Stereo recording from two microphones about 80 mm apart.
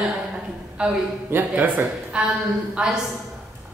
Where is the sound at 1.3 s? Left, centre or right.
Right.